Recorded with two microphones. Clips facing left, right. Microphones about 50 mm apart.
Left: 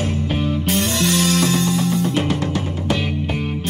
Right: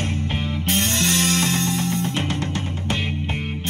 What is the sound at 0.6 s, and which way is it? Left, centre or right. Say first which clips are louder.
Music: even; right.